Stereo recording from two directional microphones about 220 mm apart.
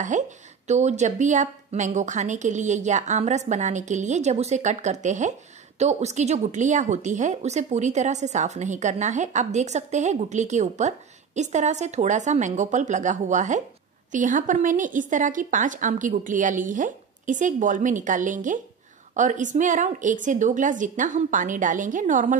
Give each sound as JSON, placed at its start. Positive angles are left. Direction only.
{"t": 0.1, "sound": "speech", "side_deg": -35}